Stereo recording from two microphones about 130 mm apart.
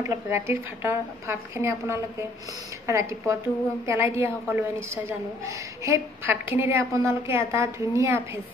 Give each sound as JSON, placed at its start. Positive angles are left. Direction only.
{"t": 0.0, "sound": "a woman's voice", "side_deg": -20}